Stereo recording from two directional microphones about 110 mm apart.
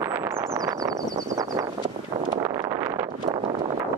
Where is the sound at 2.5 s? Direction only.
35° right (ahead or behind).